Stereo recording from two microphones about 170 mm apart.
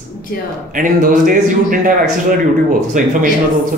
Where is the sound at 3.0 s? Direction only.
50° right (ahead or behind).